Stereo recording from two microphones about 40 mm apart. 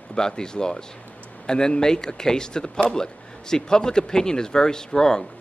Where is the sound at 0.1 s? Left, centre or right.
Centre.